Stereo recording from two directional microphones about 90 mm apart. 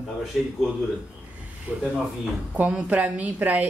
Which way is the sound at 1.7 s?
20° right (ahead or behind).